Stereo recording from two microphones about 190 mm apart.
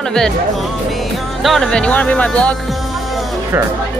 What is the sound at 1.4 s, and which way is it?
Speech, centre (ahead or behind).